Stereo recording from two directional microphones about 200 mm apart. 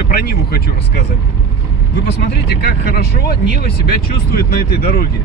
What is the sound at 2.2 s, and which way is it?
Speech, 55° left (ahead or behind).